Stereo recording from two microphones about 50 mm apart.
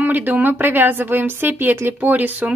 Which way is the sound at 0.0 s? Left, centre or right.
Right.